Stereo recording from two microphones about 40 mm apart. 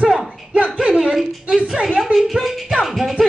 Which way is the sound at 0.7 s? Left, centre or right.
Right.